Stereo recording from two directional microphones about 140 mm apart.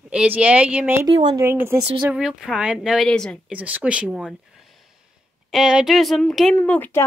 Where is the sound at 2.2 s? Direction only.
5° right (ahead or behind).